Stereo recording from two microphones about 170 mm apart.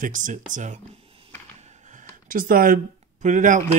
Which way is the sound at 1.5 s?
50° right (ahead or behind).